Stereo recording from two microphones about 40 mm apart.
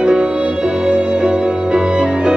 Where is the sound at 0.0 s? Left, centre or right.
Right.